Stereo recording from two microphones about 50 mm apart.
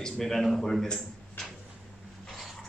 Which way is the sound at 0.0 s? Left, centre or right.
Centre.